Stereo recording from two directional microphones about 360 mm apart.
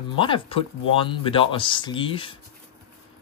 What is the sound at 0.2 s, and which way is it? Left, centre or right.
Speech, centre.